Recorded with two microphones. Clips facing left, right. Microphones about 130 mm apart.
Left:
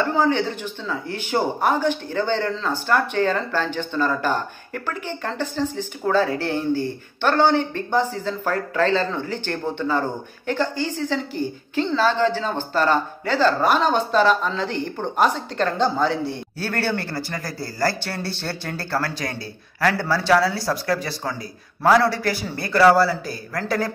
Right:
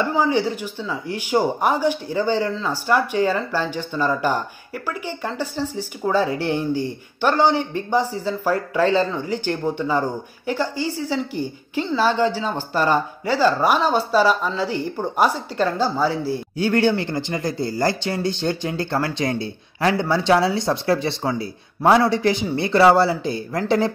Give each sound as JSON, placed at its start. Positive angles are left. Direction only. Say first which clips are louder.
{"t": 0.1, "sound": "speech", "louder": "right 1 dB", "side_deg": -10}
{"t": 16.5, "sound": "speech", "louder": "right 7 dB", "side_deg": -15}